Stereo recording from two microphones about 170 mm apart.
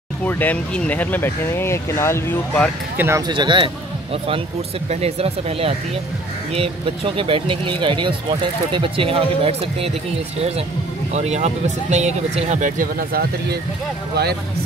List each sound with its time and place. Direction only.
0.2 s speech: 10° left (ahead or behind)
3.0 s speech: 15° right (ahead or behind)
3.3 s speech: 25° right (ahead or behind)
11.1 s speech: 40° right (ahead or behind); by 13.6 s 65° right (ahead or behind)